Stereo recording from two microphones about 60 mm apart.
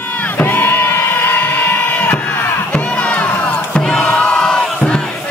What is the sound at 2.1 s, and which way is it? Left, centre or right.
Crowd, left.